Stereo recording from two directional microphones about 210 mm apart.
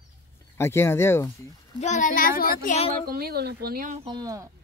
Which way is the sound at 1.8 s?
35° left (ahead or behind).